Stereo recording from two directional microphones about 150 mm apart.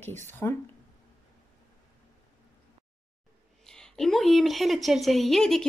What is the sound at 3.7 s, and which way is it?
A woman's voice, 5° left (ahead or behind).